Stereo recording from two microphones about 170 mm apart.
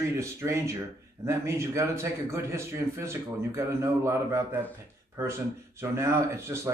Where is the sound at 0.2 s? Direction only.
15° right (ahead or behind).